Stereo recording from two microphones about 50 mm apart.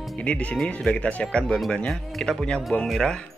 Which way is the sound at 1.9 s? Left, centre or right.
Centre.